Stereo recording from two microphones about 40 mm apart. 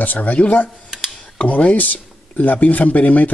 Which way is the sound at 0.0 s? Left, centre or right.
Left.